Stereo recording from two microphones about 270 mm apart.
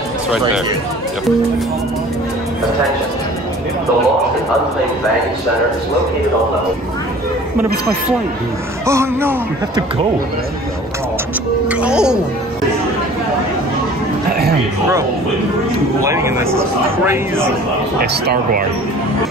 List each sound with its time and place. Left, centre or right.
8.8 s a man's voice: centre
11.7 s speech: centre
16.0 s a man's voice: centre
18.2 s speech: right